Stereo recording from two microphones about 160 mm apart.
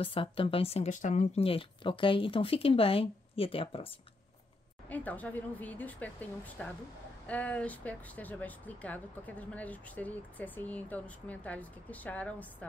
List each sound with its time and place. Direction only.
0.0 s speech: 35° left (ahead or behind)
4.8 s speech: 10° left (ahead or behind)